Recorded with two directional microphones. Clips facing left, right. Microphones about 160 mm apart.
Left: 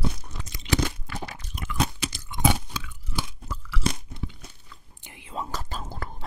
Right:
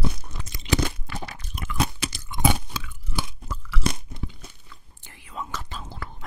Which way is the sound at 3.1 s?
55° right (ahead or behind).